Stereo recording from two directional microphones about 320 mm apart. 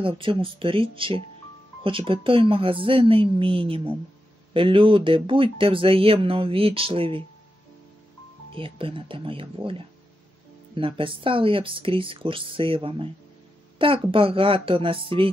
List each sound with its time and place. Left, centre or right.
0.0 s speech: centre
8.5 s speech: centre